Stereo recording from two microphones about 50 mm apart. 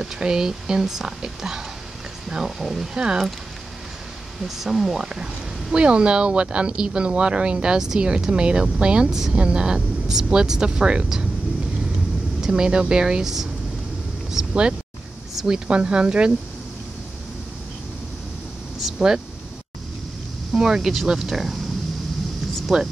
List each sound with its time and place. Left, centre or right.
0.0 s speech: centre
4.5 s speech: centre
12.4 s speech: centre
14.5 s speech: centre
15.3 s a sound: centre
15.7 s speech: centre
18.8 s air conditioning: centre
20.5 s speech: centre
22.7 s speech: centre